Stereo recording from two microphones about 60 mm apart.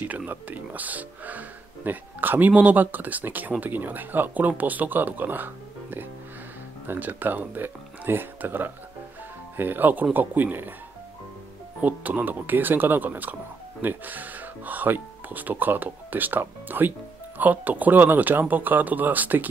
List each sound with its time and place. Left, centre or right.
0.0 s speech: right
11.8 s speech: right